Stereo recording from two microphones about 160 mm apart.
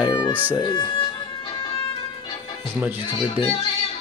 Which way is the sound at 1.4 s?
30° left (ahead or behind).